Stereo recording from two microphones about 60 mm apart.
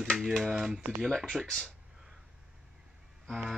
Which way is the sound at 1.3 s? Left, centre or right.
Centre.